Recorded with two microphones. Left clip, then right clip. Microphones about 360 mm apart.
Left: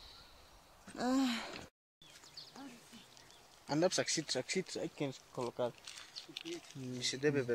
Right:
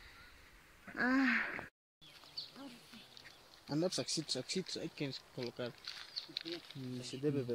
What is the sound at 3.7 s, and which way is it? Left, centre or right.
Speech, left.